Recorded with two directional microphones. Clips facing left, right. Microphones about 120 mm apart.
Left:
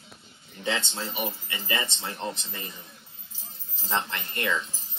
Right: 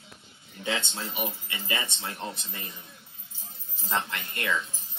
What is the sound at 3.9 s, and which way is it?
Speech, 25° left (ahead or behind).